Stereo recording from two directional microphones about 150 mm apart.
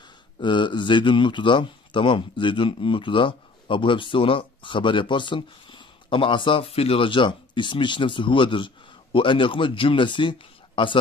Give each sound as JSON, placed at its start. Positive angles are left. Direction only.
{"t": 0.4, "sound": "a man's voice", "side_deg": 30}